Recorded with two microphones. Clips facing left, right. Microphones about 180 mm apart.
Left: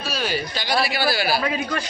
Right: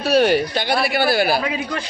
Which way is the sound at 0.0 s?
60° right (ahead or behind).